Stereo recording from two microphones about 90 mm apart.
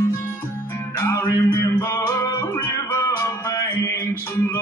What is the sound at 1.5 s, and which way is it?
Music, 30° left (ahead or behind).